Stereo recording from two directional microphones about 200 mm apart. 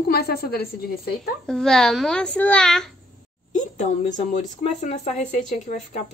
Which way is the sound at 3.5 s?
35° left (ahead or behind).